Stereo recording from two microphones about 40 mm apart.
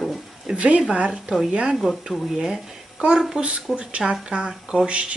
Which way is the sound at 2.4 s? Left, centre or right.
Centre.